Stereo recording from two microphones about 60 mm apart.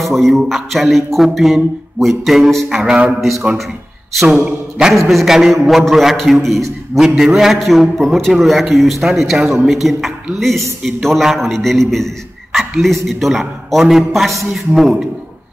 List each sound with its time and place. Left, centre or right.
0.0 s music: centre
4.5 s a man's voice: centre
4.9 s music: centre